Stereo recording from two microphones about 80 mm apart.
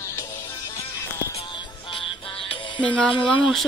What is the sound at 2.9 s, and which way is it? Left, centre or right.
Speech, centre.